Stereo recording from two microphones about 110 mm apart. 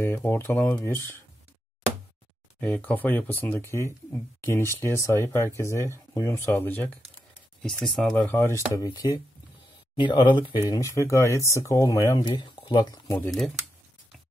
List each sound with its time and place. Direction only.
0.0 s speech: 20° left (ahead or behind)
2.6 s speech: 15° left (ahead or behind)
7.6 s speech: 5° left (ahead or behind); by 9.2 s 30° left (ahead or behind)
9.9 s speech: 45° left (ahead or behind)
10.7 s speech: 30° left (ahead or behind)
12.2 s speech: 45° left (ahead or behind)